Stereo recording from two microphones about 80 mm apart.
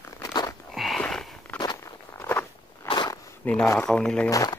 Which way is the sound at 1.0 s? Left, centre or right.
Centre.